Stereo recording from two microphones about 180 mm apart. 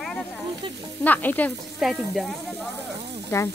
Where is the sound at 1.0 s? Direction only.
10° left (ahead or behind).